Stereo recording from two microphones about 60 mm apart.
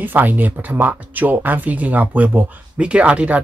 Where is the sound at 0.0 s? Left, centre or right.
Right.